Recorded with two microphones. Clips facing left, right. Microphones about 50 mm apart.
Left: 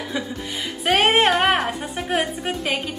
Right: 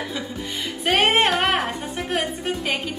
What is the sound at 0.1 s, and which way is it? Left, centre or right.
A woman's voice, centre.